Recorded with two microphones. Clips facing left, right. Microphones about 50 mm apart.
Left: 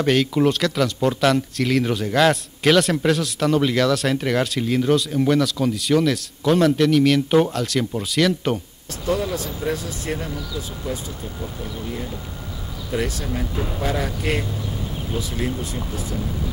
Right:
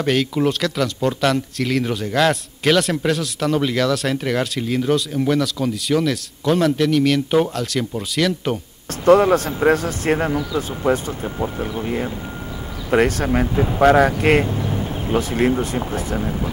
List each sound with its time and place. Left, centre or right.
0.0 s speech: centre
9.0 s speech: right